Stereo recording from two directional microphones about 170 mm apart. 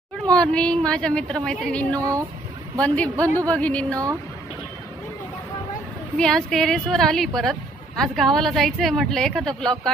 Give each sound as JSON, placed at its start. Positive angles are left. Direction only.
{"t": 0.4, "sound": "a woman's voice", "side_deg": 5}
{"t": 2.0, "sound": "speech", "side_deg": -20}
{"t": 2.8, "sound": "a woman's voice", "side_deg": 10}
{"t": 6.1, "sound": "a woman's voice", "side_deg": 5}